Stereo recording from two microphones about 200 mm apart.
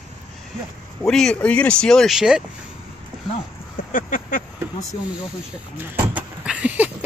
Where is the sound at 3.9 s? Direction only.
40° left (ahead or behind).